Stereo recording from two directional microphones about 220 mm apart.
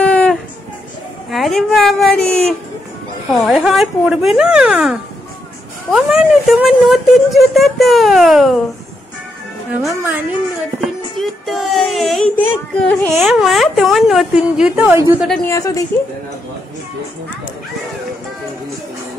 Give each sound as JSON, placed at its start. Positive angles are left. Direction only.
{"t": 0.0, "sound": "a sound", "side_deg": 5}
{"t": 1.3, "sound": "speech", "side_deg": 0}
{"t": 9.8, "sound": "a woman's voice", "side_deg": -15}
{"t": 11.1, "sound": "a woman's voice", "side_deg": 0}
{"t": 15.2, "sound": "speech", "side_deg": 5}
{"t": 15.5, "sound": "a woman's voice", "side_deg": 15}